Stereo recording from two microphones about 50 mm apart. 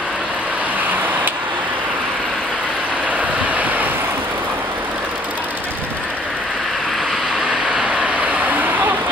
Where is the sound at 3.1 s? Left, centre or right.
Right.